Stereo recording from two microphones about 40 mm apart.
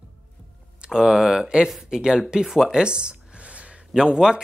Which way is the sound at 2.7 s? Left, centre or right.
Right.